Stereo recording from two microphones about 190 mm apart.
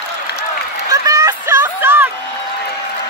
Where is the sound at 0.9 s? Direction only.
20° right (ahead or behind).